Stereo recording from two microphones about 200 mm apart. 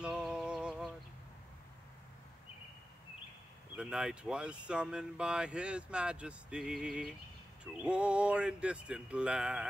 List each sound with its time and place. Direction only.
0.0 s music: 5° right (ahead or behind)
3.7 s speech: 5° right (ahead or behind)